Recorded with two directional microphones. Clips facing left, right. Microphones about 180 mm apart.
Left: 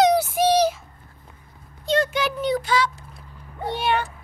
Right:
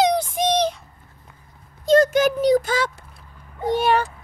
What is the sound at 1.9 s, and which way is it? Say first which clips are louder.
Speech: right 7 dB; 45° right (ahead or behind).